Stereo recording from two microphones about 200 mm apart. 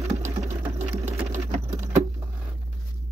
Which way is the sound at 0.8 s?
10° right (ahead or behind).